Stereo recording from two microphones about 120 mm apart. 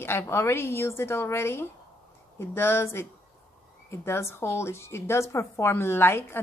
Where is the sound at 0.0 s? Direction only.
20° left (ahead or behind).